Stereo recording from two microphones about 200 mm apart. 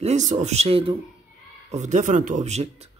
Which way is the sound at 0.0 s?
35° right (ahead or behind).